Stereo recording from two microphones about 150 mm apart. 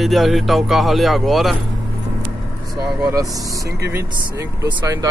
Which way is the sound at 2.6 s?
Centre (ahead or behind).